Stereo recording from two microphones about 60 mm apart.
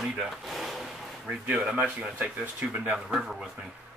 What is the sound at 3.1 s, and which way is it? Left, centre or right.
Speech, centre.